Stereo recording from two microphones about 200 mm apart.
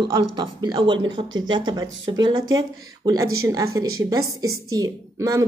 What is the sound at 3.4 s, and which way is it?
A woman's voice, 15° right (ahead or behind).